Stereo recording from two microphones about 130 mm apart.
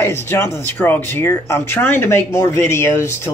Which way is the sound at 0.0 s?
20° left (ahead or behind).